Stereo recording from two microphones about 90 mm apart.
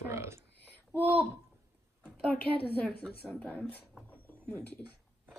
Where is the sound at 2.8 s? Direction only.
5° left (ahead or behind).